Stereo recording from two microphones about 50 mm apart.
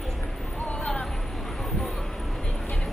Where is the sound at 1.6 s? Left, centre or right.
Centre.